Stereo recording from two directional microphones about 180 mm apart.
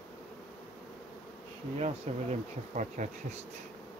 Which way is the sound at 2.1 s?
35° right (ahead or behind).